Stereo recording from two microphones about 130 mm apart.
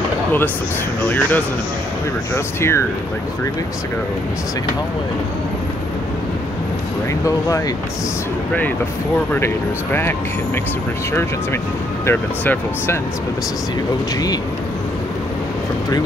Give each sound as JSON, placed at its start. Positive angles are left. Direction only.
{"t": 1.0, "sound": "speech", "side_deg": 15}
{"t": 7.2, "sound": "speech", "side_deg": 25}
{"t": 12.1, "sound": "speech", "side_deg": 20}